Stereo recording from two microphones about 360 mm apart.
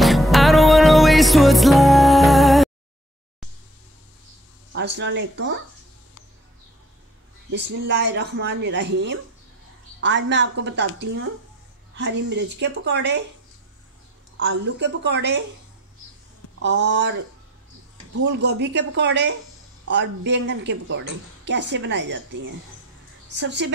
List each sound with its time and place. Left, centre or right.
0.0 s music: centre
4.7 s speech: right
7.5 s speech: right
14.8 s speech: right
16.6 s speech: right
18.2 s a woman's voice: right